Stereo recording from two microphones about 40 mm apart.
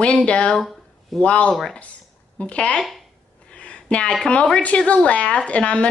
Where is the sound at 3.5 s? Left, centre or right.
Left.